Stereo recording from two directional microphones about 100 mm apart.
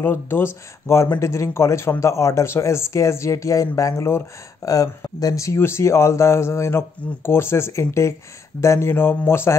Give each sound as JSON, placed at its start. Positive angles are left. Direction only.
{"t": 0.0, "sound": "speech", "side_deg": 20}
{"t": 4.6, "sound": "speech", "side_deg": 35}